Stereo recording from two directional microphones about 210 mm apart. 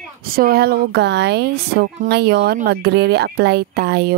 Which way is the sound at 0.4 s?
45° right (ahead or behind).